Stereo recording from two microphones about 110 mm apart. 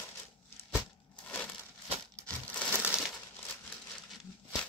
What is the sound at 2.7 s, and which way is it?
Crumpling, 10° right (ahead or behind).